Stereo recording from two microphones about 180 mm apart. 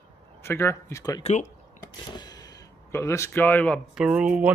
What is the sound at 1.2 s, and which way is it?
Speech, 40° left (ahead or behind).